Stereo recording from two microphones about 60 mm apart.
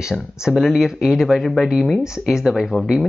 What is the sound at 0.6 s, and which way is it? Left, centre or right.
Speech, centre.